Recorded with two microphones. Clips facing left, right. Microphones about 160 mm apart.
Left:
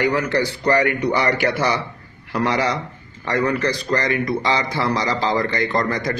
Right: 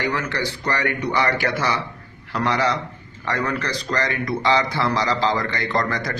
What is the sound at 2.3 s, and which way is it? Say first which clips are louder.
A man's voice: left 1 dB; 15° left (ahead or behind).